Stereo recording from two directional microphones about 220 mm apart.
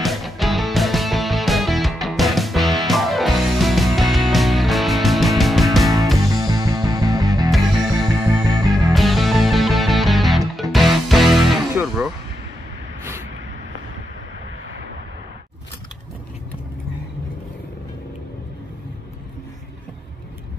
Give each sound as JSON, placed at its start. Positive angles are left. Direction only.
{"t": 0.0, "sound": "music", "side_deg": 0}
{"t": 6.3, "sound": "music", "side_deg": -15}
{"t": 8.9, "sound": "music", "side_deg": 0}